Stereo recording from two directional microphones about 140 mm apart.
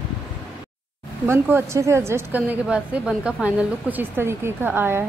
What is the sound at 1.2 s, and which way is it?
Speech, 20° right (ahead or behind).